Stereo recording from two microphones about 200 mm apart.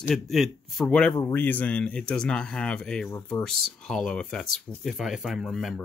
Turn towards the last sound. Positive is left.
turn(degrees=0)  # may be behind; listen again after turning